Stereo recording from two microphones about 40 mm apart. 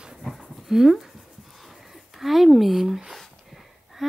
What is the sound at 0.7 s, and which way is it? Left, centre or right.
Speech, centre.